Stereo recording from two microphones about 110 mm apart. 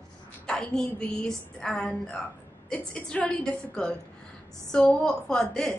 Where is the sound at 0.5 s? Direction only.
5° left (ahead or behind).